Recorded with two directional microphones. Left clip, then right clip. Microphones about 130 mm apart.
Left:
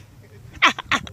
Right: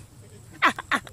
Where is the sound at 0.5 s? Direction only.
10° left (ahead or behind).